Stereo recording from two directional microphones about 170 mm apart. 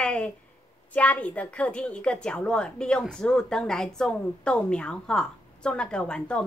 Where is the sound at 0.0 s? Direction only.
5° left (ahead or behind).